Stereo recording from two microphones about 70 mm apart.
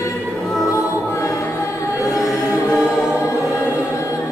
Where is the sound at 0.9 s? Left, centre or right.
Left.